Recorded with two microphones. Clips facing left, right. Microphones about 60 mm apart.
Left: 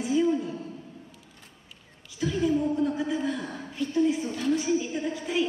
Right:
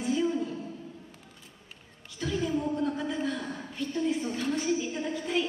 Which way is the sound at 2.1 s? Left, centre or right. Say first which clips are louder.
Left 4 dB; centre.